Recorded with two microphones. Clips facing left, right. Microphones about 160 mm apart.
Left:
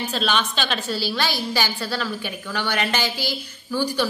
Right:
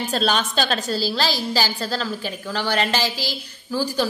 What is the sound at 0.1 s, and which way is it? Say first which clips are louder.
A woman's voice: right 3 dB; 40° right (ahead or behind).